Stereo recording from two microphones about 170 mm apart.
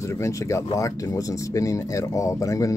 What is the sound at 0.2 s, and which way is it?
Speech, 15° left (ahead or behind).